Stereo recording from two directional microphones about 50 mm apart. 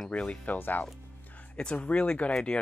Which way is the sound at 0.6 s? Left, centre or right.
Left.